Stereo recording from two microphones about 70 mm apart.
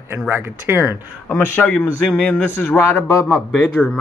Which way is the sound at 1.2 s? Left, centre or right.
Left.